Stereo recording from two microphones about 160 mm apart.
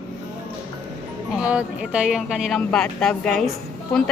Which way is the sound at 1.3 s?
5° right (ahead or behind).